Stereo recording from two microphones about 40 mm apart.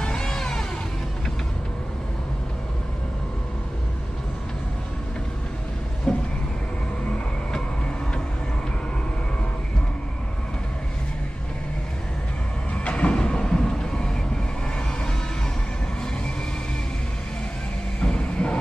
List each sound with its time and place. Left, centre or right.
0.0 s a sound: left
6.1 s vehicle: left
12.7 s vehicle: left
18.0 s music: left